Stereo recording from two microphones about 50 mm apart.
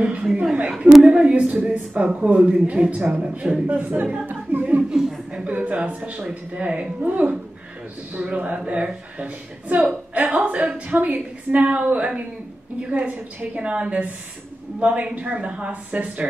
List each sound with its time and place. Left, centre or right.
0.0 s speech: right
0.3 s a woman's voice: centre
1.0 s speech: right
3.0 s speech: right
3.3 s speech: centre
3.6 s speech: right
4.3 s a sound: right
4.9 s speech: centre
5.3 s speech: right
7.1 s speech: right